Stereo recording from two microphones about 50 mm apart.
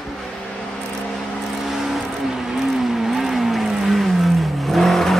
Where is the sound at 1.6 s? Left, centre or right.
Centre.